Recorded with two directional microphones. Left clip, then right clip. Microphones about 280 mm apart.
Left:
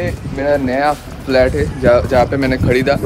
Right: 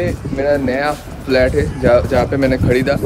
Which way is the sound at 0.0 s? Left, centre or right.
Centre.